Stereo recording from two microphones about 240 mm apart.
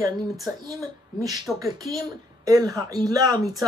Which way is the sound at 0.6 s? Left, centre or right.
Centre.